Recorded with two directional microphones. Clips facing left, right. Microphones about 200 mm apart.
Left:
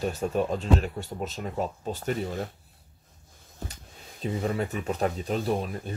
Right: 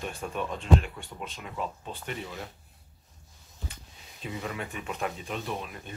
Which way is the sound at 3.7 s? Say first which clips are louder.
Left 4 dB; 35° left (ahead or behind).